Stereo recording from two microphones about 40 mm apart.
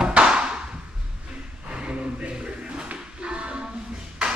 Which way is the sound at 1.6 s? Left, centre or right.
Right.